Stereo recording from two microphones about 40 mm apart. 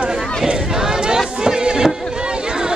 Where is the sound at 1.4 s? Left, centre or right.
Centre.